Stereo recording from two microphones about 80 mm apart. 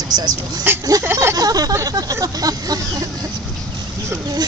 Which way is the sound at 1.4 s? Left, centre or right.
Right.